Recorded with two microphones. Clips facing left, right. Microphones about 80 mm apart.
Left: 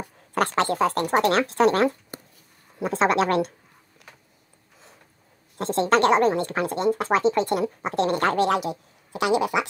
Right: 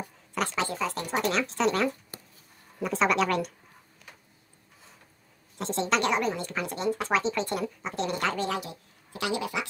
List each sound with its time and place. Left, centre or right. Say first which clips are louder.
0.0 s speech: left 6 dB; left
2.8 s speech: left 4 dB; left
5.8 s speech: left 8 dB; left
6.7 s speech: left 4 dB; left
7.8 s speech: left 7 dB; left